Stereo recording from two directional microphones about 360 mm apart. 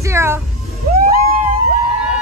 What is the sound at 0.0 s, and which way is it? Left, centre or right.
Speech, centre.